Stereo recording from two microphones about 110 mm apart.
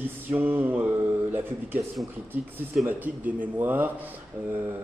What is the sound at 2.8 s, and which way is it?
A man's voice, 15° right (ahead or behind).